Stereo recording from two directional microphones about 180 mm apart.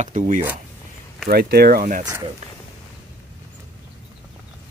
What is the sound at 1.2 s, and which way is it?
Speech, 60° right (ahead or behind).